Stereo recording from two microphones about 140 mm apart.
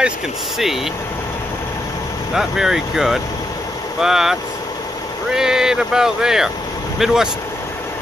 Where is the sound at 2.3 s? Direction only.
5° right (ahead or behind).